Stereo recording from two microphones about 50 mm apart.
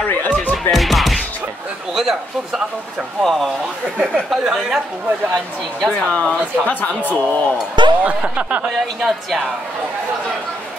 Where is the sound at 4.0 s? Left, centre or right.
Centre.